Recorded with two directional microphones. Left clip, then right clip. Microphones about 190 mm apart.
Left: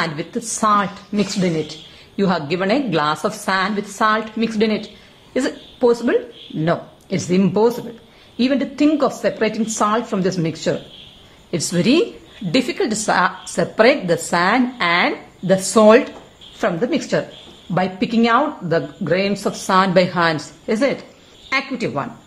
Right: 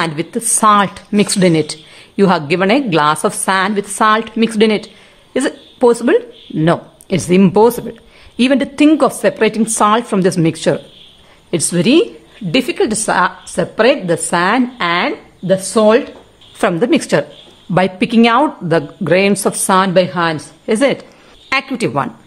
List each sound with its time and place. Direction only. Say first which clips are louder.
0.0 s a woman's voice: right 5 dB; 30° right (ahead or behind)
15.5 s a woman's voice: right 1 dB; 10° right (ahead or behind)
16.5 s speech: right 6 dB; 35° right (ahead or behind)
19.9 s a woman's voice: right 2 dB; 15° right (ahead or behind)
20.7 s speech: right 5 dB; 30° right (ahead or behind)